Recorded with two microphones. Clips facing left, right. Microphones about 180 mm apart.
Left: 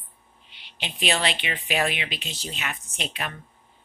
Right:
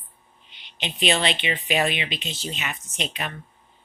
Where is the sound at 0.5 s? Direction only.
5° left (ahead or behind).